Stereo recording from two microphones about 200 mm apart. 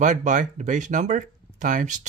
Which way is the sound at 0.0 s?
40° right (ahead or behind).